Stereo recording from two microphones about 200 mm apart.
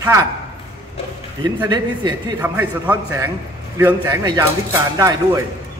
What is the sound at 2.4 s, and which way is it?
A man's voice, 10° right (ahead or behind).